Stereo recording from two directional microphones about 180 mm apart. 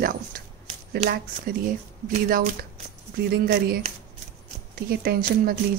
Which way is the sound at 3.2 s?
60° right (ahead or behind).